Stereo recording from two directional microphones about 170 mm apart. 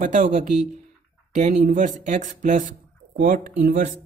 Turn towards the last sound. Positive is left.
turn(degrees=-55)  # may be behind; listen again after turning